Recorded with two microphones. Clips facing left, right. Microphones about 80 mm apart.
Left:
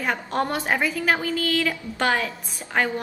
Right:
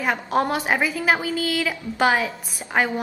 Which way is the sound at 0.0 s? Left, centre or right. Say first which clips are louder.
Right 3 dB; centre.